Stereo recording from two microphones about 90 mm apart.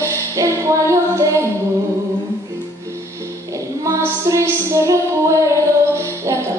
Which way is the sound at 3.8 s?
35° right (ahead or behind).